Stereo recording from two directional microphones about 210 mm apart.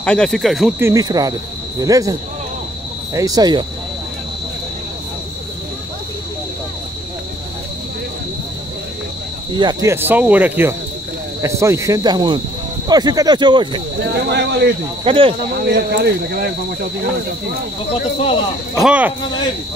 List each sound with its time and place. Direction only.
0.0 s speech: 5° left (ahead or behind)
0.7 s cricket: 15° right (ahead or behind)
3.2 s cricket: 15° right (ahead or behind)
9.5 s cricket: 20° right (ahead or behind)
12.8 s speech: 20° right (ahead or behind)
14.0 s speech: 55° right (ahead or behind)
15.0 s speech: 25° right (ahead or behind)
15.5 s speech: 50° right (ahead or behind)
18.8 s speech: 5° right (ahead or behind)